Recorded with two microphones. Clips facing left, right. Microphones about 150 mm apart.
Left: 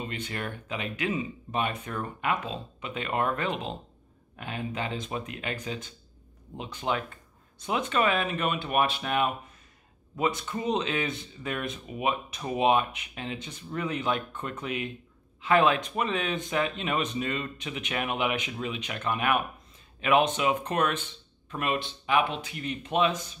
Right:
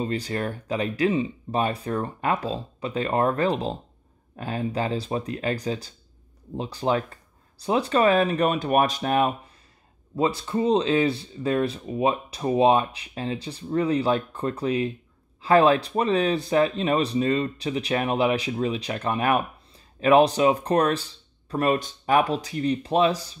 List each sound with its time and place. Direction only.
0.0 s speech: 35° right (ahead or behind)